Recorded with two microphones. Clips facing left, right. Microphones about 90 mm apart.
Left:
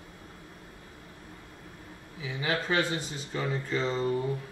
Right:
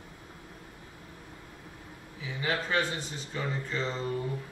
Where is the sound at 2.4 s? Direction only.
15° left (ahead or behind).